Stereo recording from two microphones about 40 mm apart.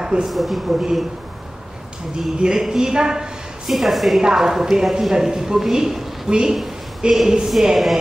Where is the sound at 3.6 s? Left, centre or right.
Centre.